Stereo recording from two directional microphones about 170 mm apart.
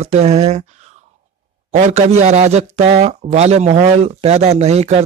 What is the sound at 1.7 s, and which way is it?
A man's voice, 45° right (ahead or behind).